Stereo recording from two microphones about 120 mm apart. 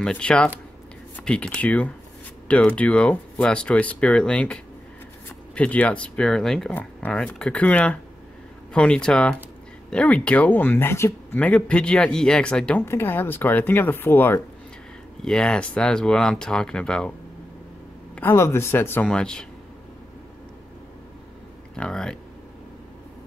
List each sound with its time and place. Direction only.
0.0 s speech: 10° left (ahead or behind)
11.3 s speech: 10° left (ahead or behind)
12.8 s speech: 20° left (ahead or behind)
15.2 s speech: 5° left (ahead or behind)
18.3 s speech: 25° left (ahead or behind)
19.0 s speech: 5° left (ahead or behind)
21.7 s speech: 5° left (ahead or behind)